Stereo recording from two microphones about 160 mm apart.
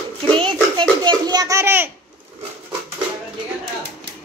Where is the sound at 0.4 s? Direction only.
30° right (ahead or behind); by 1.9 s 15° right (ahead or behind).